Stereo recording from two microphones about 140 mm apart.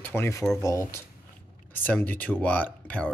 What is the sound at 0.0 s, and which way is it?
Speech, 15° left (ahead or behind).